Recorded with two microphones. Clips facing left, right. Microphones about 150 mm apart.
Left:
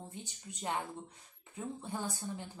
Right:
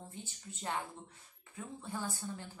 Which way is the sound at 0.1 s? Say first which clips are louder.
Left 1 dB; 15° left (ahead or behind).